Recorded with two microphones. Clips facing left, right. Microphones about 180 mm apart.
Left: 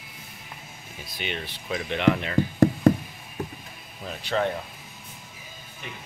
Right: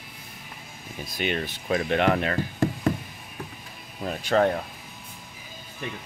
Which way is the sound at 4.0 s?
45° right (ahead or behind).